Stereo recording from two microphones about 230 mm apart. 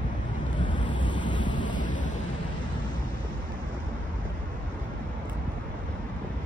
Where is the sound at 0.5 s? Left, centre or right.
Centre.